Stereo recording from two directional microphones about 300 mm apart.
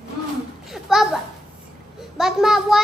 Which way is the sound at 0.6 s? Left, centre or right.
Centre.